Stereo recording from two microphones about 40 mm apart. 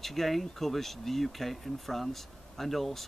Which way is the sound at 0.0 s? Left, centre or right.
Centre.